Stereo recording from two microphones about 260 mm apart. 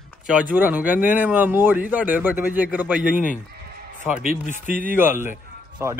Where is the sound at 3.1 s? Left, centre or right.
Left.